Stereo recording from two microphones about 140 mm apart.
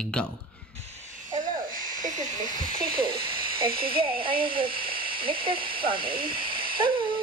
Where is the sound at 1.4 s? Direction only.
75° right (ahead or behind).